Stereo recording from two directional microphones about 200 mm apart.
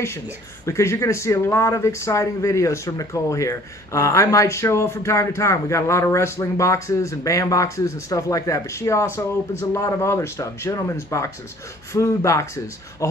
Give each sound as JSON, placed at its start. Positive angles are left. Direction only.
{"t": 0.7, "sound": "speech", "side_deg": 15}